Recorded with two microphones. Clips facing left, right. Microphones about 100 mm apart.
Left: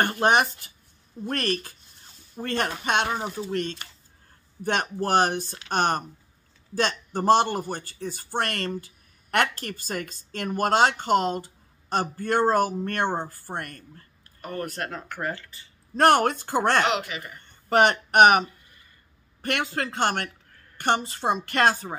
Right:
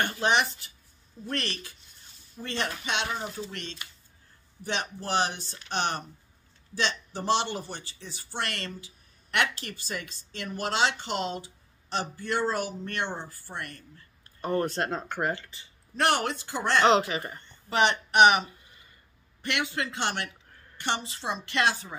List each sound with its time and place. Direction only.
0.0 s speech: 50° left (ahead or behind)
14.4 s speech: 25° right (ahead or behind)
16.0 s speech: 50° left (ahead or behind)
16.8 s speech: 35° right (ahead or behind)
17.6 s speech: 50° left (ahead or behind)